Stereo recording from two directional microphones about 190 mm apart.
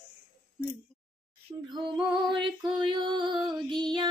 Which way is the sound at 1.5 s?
15° right (ahead or behind).